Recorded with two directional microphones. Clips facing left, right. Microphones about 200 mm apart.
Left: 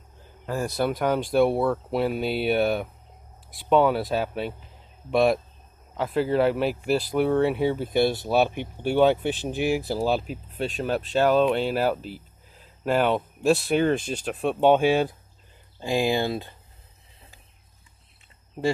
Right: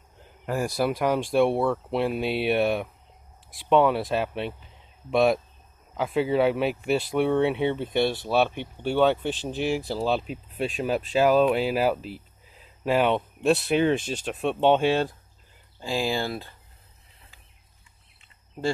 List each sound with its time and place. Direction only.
0.7 s speech: centre (ahead or behind); by 16.5 s 20° left (ahead or behind)